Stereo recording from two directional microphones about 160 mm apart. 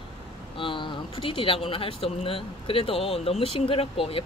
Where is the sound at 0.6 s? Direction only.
30° left (ahead or behind).